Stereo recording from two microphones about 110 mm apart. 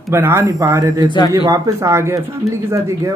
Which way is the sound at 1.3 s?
25° right (ahead or behind).